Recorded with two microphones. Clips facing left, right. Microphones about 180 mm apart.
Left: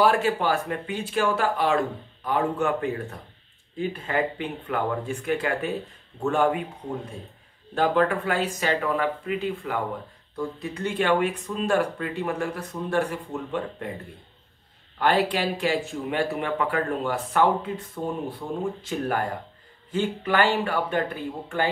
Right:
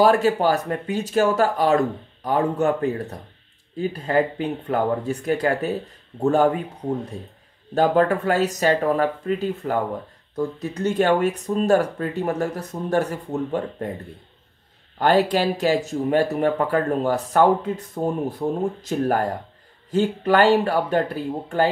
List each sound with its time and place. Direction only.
0.0 s speech: 40° right (ahead or behind)
7.7 s speech: 40° right (ahead or behind)
15.0 s speech: 40° right (ahead or behind)